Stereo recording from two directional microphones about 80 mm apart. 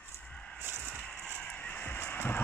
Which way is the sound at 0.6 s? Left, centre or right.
Right.